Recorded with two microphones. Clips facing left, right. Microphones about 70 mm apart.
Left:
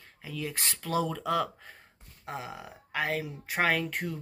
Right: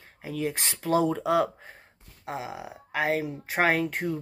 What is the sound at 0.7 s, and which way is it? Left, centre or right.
Speech, right.